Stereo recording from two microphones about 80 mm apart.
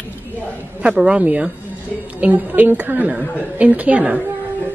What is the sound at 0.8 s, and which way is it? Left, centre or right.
A woman's voice, centre.